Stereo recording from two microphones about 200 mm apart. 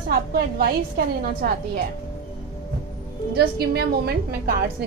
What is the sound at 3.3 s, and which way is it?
A woman's voice, 55° right (ahead or behind).